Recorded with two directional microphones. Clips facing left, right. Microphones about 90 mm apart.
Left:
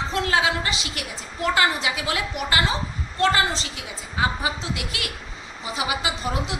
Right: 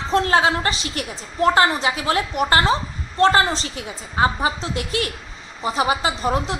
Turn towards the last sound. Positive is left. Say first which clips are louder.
# right 5 dB
turn(degrees=-40)  # may be behind; listen again after turning